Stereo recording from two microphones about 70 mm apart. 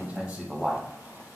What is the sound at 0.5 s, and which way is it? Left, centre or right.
Speech, centre.